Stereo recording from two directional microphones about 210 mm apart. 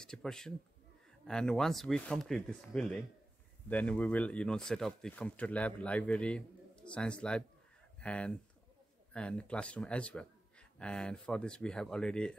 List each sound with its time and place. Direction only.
0.0 s speech: 5° left (ahead or behind)